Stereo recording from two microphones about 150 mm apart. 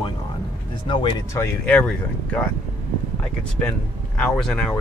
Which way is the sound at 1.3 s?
15° left (ahead or behind).